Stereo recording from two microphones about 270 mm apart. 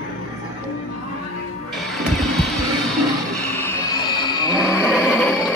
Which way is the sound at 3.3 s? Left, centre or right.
Centre.